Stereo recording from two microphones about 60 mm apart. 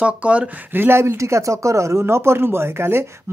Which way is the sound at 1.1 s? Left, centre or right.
Right.